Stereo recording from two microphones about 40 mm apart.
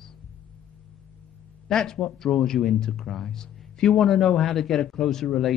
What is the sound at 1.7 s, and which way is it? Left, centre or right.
A man's voice, centre.